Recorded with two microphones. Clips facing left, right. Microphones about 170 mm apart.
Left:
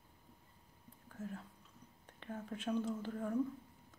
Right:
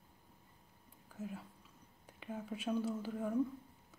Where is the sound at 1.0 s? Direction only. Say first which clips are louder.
Right 1 dB; 10° right (ahead or behind).